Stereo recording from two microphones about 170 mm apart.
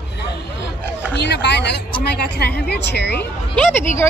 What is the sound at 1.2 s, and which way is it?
A woman's voice, 90° left.